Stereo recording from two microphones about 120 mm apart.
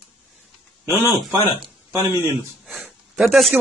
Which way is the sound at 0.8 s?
20° right (ahead or behind).